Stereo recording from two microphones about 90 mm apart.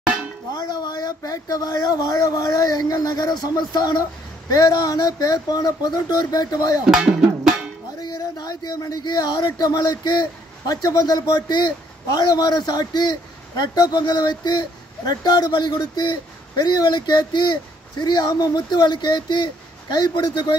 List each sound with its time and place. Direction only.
0.5 s speech: 50° left (ahead or behind)
8.0 s speech: 50° left (ahead or behind)